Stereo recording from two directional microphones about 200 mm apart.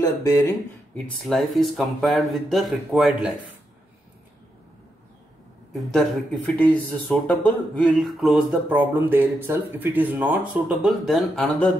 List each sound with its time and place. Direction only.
0.0 s speech: 15° left (ahead or behind)
0.9 s speech: centre (ahead or behind)
5.7 s speech: centre (ahead or behind)